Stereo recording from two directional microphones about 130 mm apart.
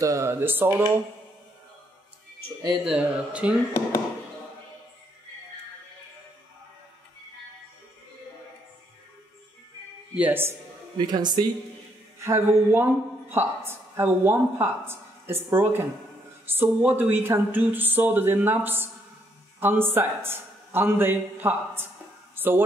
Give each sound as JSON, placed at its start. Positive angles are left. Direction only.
{"t": 0.0, "sound": "speech", "side_deg": -25}
{"t": 2.7, "sound": "speech", "side_deg": -5}
{"t": 10.1, "sound": "speech", "side_deg": -15}
{"t": 11.0, "sound": "speech", "side_deg": -35}
{"t": 12.2, "sound": "a man's voice", "side_deg": -20}
{"t": 22.3, "sound": "a sound", "side_deg": -15}